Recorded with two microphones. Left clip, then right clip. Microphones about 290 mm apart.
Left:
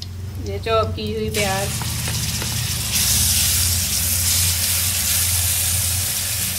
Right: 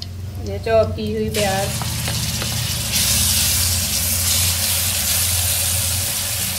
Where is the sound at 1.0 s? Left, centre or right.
Centre.